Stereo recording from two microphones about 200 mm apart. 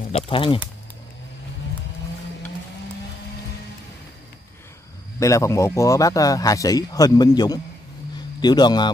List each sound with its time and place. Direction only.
0.1 s speech: 25° left (ahead or behind)
5.2 s speech: 15° left (ahead or behind)